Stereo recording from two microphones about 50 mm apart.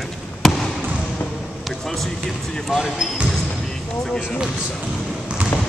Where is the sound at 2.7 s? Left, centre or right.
Centre.